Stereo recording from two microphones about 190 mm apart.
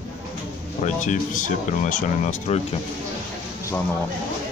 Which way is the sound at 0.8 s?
40° left (ahead or behind).